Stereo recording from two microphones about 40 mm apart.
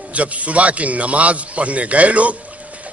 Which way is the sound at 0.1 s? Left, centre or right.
Right.